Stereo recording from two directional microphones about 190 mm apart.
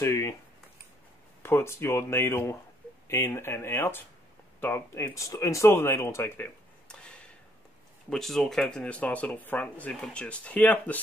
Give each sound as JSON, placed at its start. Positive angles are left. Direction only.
{"t": 0.0, "sound": "speech", "side_deg": 15}
{"t": 1.4, "sound": "speech", "side_deg": 15}